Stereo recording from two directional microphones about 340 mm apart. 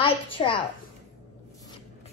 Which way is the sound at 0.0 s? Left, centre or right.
Centre.